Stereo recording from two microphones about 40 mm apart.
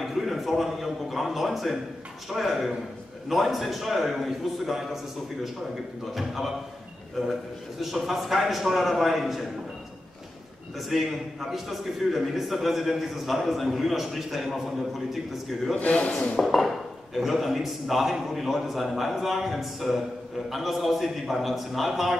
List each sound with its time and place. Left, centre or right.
0.0 s a man's voice: centre
6.1 s a man's voice: centre
7.8 s a man's voice: centre
10.9 s a man's voice: centre
15.8 s a man's voice: left
16.5 s a man's voice: centre